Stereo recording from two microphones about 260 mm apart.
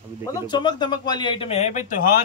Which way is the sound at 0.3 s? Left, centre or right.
Centre.